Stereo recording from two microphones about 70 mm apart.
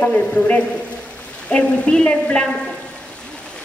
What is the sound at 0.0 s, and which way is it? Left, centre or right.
A man's voice, left.